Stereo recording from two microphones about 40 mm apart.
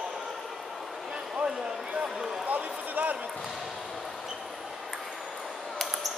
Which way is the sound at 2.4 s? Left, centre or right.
Right.